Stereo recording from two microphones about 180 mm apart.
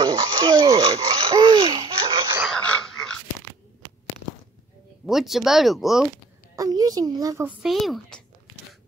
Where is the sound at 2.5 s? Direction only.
5° left (ahead or behind).